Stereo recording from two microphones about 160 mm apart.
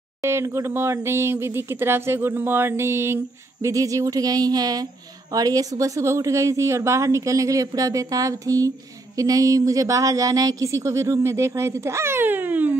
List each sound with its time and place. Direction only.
0.2 s speech: 15° right (ahead or behind)